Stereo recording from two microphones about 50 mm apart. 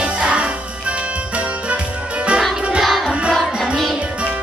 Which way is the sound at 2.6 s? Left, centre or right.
Centre.